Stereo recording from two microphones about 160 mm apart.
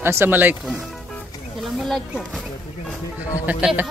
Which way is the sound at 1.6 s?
Centre (ahead or behind).